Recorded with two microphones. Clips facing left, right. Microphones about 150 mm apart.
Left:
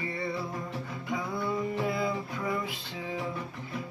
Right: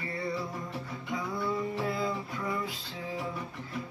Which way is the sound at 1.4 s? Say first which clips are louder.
Left 1 dB; 10° left (ahead or behind).